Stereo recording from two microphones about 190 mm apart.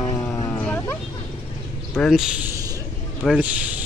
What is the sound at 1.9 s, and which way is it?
Speech, centre (ahead or behind).